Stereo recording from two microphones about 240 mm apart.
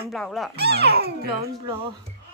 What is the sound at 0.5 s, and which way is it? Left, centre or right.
Speech, right.